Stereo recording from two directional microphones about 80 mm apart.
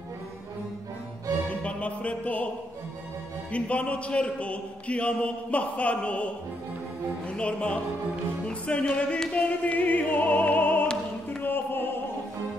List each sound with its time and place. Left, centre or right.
1.5 s music: centre
3.5 s a man's voice: centre
8.5 s music: centre